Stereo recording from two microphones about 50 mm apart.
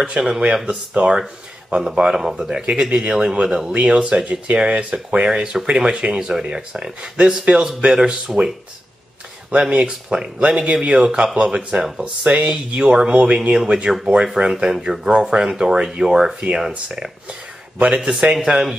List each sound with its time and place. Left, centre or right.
0.2 s speech: right
9.7 s speech: right
17.3 s a sound: right
18.0 s speech: centre